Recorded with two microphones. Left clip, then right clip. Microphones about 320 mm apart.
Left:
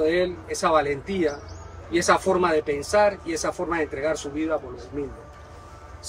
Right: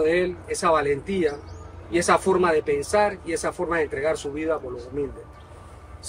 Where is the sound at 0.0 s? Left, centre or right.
Centre.